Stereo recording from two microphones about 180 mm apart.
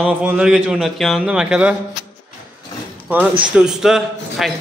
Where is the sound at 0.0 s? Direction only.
5° right (ahead or behind).